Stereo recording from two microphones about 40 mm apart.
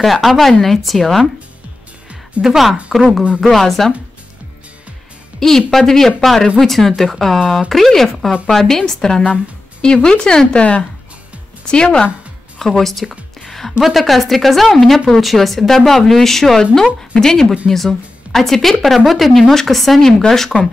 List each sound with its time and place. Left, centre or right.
0.0 s speech: centre
2.4 s speech: centre
5.7 s speech: centre
11.6 s speech: left
12.5 s speech: centre
13.5 s music: centre
13.7 s speech: centre